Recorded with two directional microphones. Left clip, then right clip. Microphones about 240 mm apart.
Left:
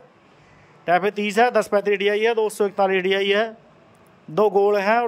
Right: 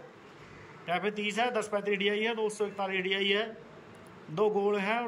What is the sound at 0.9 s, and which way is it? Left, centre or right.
Speech, centre.